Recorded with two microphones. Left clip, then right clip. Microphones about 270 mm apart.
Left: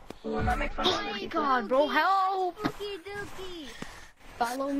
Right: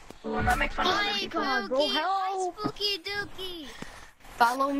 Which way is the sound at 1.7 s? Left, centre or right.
Left.